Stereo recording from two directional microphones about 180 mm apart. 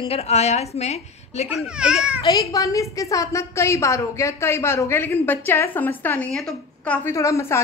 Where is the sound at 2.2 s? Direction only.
20° left (ahead or behind).